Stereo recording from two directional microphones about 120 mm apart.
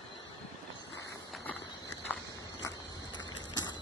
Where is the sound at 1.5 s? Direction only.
15° left (ahead or behind).